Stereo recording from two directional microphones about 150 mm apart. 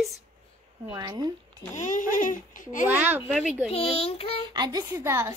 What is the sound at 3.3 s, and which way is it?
Speech, centre (ahead or behind).